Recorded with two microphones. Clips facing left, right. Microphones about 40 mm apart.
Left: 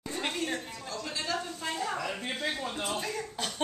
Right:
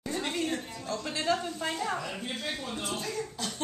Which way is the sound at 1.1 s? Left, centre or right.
Centre.